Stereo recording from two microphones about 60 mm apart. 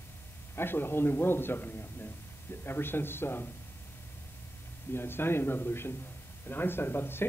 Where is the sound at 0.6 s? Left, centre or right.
Left.